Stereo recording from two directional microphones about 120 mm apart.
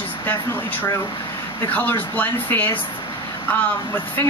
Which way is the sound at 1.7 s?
15° left (ahead or behind).